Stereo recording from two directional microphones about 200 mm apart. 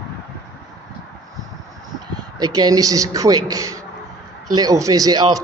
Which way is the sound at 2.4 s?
20° right (ahead or behind).